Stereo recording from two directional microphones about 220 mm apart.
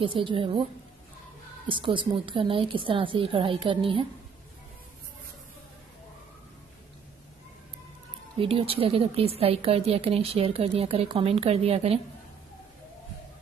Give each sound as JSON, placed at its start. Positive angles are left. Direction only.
{"t": 0.0, "sound": "a woman's voice", "side_deg": -25}
{"t": 1.7, "sound": "a woman's voice", "side_deg": -20}
{"t": 8.4, "sound": "a woman's voice", "side_deg": -25}